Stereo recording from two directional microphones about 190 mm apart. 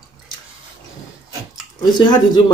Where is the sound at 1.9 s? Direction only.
25° left (ahead or behind).